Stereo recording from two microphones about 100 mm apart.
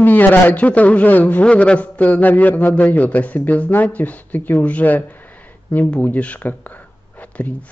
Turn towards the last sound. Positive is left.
turn(degrees=15)  # may be behind; listen again after turning